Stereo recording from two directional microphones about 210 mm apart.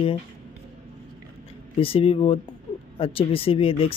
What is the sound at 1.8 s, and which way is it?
Speech, 25° left (ahead or behind).